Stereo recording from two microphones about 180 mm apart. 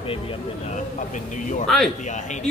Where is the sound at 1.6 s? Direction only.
Centre (ahead or behind).